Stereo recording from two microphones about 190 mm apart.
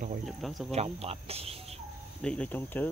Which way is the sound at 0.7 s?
30° right (ahead or behind).